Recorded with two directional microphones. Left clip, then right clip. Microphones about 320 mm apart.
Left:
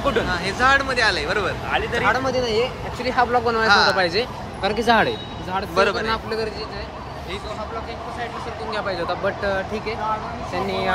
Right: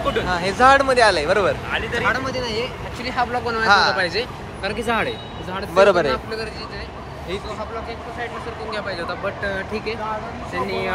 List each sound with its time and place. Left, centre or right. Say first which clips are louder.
0.3 s speech: right 6 dB; centre
1.7 s speech: left 1 dB; left
3.6 s speech: right 2 dB; centre
4.0 s speech: left 1 dB; left
5.8 s speech: right 6 dB; centre
6.0 s speech: even; left
8.7 s speech: left 3 dB; left